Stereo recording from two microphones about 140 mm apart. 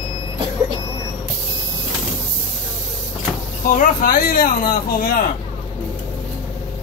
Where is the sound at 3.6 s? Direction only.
85° left.